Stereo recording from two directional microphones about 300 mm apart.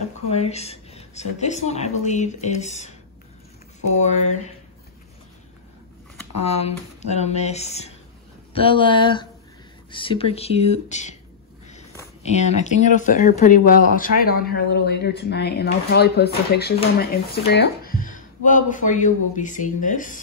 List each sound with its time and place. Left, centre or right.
0.3 s speech: left
3.9 s speech: left
6.4 s speech: left
12.2 s speech: left